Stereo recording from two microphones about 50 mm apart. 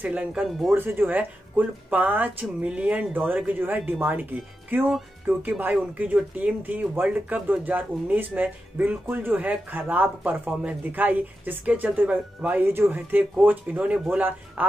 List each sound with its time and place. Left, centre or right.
0.0 s speech: right
0.3 s speech: centre
0.7 s speech: right
1.0 s speech: right
2.7 s speech: right
3.3 s speech: right